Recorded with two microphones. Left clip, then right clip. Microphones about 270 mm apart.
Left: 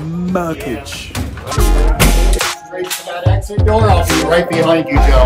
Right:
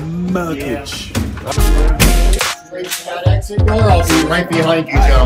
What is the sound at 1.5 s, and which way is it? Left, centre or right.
Music, centre.